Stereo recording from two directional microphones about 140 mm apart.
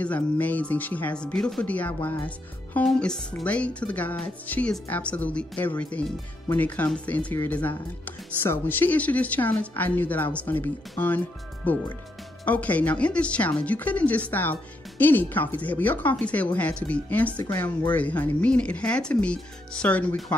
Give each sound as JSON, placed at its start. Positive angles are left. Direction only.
{"t": 0.0, "sound": "speech", "side_deg": 10}